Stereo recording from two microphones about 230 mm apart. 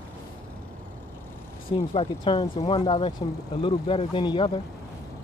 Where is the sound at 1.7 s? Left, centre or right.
Left.